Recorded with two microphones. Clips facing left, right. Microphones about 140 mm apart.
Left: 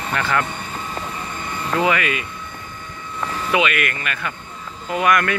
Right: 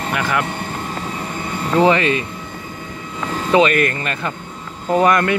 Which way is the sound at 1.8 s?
30° right (ahead or behind).